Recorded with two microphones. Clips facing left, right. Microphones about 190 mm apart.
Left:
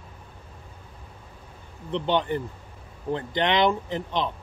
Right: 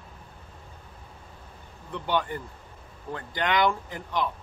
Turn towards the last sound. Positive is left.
turn(degrees=25)  # may be behind; listen again after turning